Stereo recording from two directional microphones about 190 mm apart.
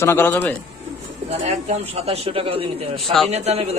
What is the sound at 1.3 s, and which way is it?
A man's voice, 30° right (ahead or behind).